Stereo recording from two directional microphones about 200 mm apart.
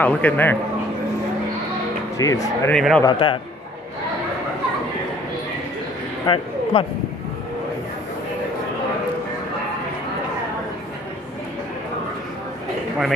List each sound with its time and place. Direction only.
0.0 s a man's voice: 10° left (ahead or behind)
2.1 s a man's voice: 15° left (ahead or behind)
2.7 s speech: 5° left (ahead or behind)
3.0 s a man's voice: 25° left (ahead or behind)
6.2 s a man's voice: 25° left (ahead or behind)